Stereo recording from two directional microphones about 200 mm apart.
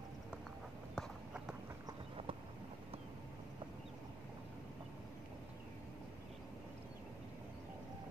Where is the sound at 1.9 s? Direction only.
25° right (ahead or behind).